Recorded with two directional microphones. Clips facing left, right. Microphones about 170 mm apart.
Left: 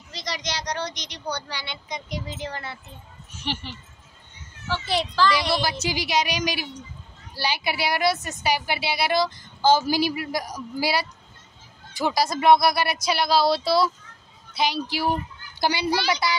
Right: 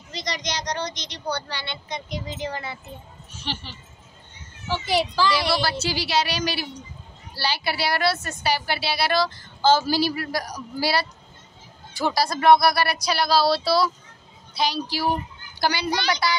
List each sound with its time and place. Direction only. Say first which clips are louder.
0.1 s a woman's voice: right 2 dB; 5° left (ahead or behind)
3.5 s a woman's voice: left 2 dB; 15° left (ahead or behind)
4.6 s a child's voice: right 3 dB; 15° right (ahead or behind)
5.5 s a woman's voice: right 1 dB; 15° left (ahead or behind)
15.6 s speech: even; 25° left (ahead or behind)
15.9 s a woman's voice: left 1 dB; 5° left (ahead or behind)